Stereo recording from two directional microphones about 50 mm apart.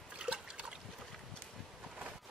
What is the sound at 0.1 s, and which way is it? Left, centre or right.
Trickle, centre.